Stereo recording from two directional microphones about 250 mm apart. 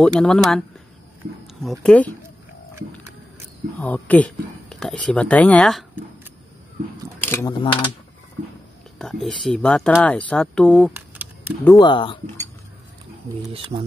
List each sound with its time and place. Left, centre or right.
0.0 s speech: centre
3.8 s speech: centre
7.2 s speech: centre
7.6 s speech: centre
8.9 s speech: centre
10.9 s typing: centre
11.8 s speech: centre
13.5 s speech: right